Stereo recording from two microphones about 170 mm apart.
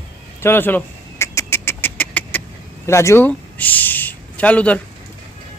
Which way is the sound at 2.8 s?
15° left (ahead or behind).